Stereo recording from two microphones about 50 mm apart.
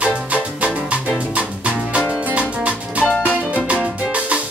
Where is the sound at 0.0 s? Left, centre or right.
Right.